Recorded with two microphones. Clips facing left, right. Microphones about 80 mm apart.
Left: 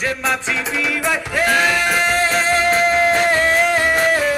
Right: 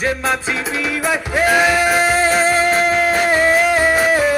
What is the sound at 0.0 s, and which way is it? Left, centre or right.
Music, centre.